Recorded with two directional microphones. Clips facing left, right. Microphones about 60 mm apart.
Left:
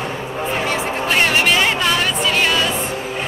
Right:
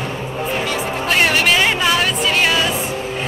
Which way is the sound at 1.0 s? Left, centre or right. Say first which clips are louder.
Right 1 dB; centre.